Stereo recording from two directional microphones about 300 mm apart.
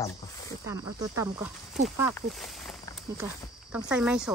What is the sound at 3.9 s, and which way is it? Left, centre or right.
Speech, centre.